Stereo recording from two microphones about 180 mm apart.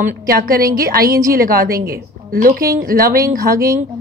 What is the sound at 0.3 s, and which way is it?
A woman's voice, 55° right (ahead or behind).